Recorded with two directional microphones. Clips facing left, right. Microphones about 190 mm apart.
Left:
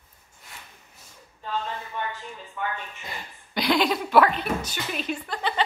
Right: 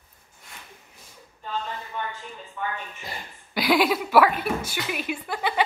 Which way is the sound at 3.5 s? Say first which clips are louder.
Right 2 dB; 5° right (ahead or behind).